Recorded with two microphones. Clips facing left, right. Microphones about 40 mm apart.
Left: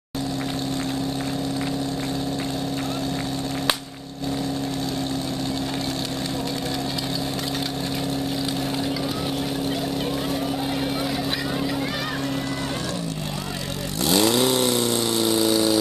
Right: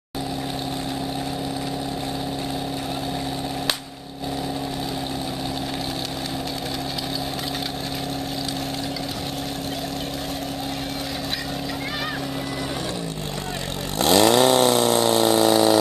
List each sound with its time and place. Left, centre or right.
13.9 s chainsaw: right